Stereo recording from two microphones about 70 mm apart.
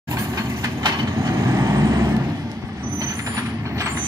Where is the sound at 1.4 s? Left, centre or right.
Right.